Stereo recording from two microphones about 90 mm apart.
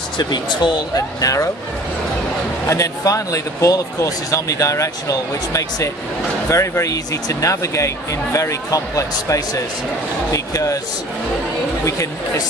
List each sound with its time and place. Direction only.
0.2 s speech: 55° left (ahead or behind)
2.7 s speech: 35° left (ahead or behind)
11.8 s speech: 35° left (ahead or behind)